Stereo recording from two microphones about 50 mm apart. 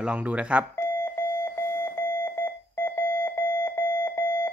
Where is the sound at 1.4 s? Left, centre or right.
Left.